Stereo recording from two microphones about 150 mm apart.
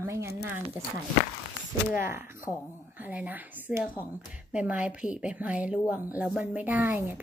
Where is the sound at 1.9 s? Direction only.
15° right (ahead or behind).